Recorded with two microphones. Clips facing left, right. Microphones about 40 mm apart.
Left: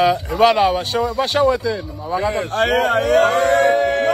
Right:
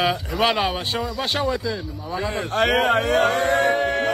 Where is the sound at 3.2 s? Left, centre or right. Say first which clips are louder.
Left 5 dB; left.